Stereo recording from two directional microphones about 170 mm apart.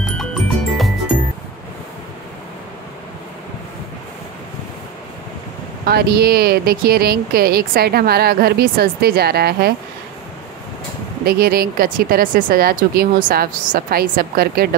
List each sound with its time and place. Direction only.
0.2 s music: centre (ahead or behind)
5.9 s speech: 65° right (ahead or behind)
11.2 s speech: 65° right (ahead or behind)